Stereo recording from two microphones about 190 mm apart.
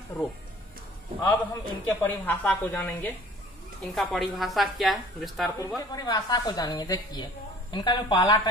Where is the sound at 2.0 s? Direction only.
10° left (ahead or behind).